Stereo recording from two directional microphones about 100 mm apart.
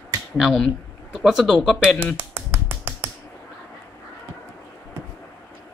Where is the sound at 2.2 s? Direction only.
20° right (ahead or behind).